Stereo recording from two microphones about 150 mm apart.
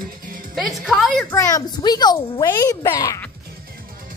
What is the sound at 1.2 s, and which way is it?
A child's voice, 20° left (ahead or behind).